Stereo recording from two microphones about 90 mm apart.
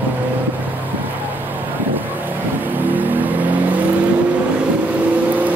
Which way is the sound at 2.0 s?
20° right (ahead or behind).